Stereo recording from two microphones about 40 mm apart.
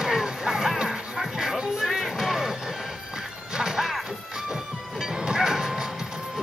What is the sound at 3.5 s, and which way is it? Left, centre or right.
Smash, centre.